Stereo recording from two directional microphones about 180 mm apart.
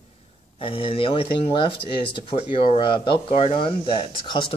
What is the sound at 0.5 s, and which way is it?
Speech, 30° left (ahead or behind).